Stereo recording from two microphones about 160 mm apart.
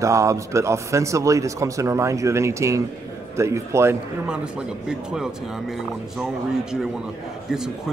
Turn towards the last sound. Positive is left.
turn(degrees=-5)  # may be behind; listen again after turning